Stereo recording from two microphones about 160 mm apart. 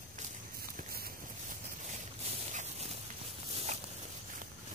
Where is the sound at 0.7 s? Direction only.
70° right (ahead or behind).